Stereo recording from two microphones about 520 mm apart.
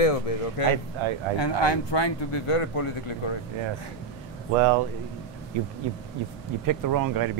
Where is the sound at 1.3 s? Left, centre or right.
Left.